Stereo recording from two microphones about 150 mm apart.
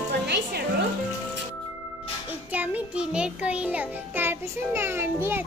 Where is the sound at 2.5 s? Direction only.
10° right (ahead or behind).